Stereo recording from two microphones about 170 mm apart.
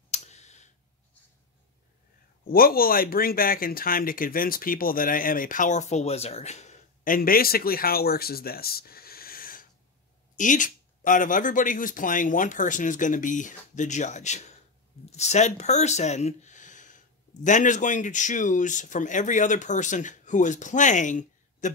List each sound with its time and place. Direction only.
0.1 s clicking: 40° left (ahead or behind)
2.4 s speech: 60° left (ahead or behind)